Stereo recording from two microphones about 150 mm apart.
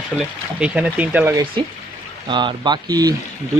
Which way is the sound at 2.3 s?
30° right (ahead or behind).